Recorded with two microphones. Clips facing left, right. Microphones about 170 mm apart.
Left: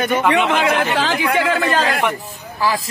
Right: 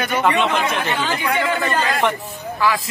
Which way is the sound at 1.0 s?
85° left.